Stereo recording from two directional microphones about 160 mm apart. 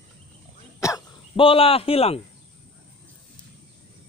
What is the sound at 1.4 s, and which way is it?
Speech, 35° left (ahead or behind).